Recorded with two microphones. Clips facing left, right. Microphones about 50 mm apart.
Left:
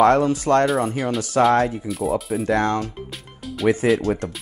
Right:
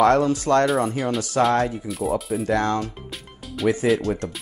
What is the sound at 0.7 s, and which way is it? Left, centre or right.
Speech, centre.